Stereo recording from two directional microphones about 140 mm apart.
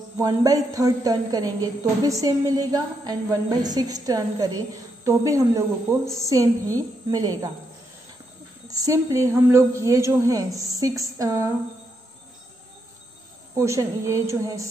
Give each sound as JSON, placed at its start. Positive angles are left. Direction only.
{"t": 0.2, "sound": "a woman's voice", "side_deg": -25}
{"t": 8.6, "sound": "a woman's voice", "side_deg": -25}
{"t": 13.6, "sound": "a woman's voice", "side_deg": -20}